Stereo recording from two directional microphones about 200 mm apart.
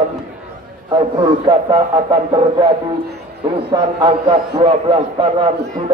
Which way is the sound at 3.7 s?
25° right (ahead or behind).